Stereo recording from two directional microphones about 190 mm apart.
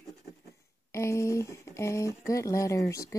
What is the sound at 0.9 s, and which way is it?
Speech, 15° left (ahead or behind).